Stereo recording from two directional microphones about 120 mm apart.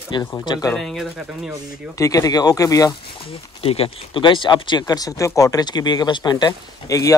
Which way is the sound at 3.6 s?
55° left (ahead or behind).